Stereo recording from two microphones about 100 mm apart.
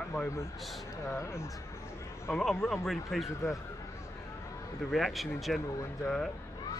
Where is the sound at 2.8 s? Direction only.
Centre (ahead or behind).